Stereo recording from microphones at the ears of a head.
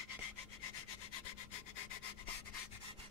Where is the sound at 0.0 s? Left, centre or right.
Left.